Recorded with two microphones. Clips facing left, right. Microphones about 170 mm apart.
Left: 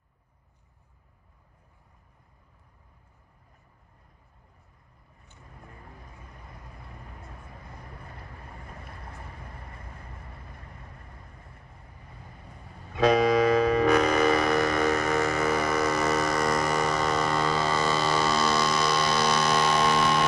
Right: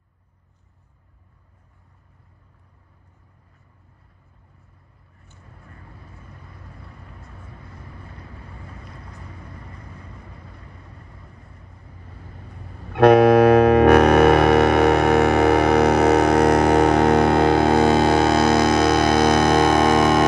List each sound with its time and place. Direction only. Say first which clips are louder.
12.9 s music: right 9 dB; 65° right (ahead or behind); by 20.2 s 50° right (ahead or behind)